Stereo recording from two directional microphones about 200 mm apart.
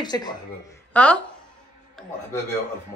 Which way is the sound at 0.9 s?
10° left (ahead or behind).